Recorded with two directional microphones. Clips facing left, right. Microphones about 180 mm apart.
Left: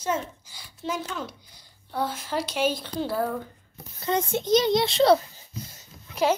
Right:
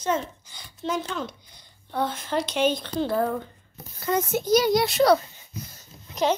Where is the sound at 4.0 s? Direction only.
25° left (ahead or behind).